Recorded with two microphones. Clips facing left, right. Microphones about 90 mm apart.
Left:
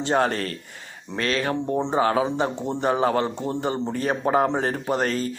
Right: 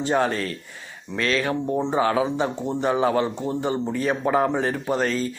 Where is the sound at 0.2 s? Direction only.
45° left (ahead or behind).